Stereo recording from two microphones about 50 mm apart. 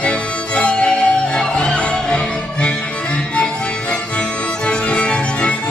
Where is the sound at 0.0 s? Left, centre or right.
Left.